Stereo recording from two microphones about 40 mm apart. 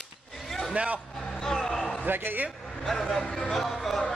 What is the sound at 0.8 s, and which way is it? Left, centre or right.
Vehicle, right.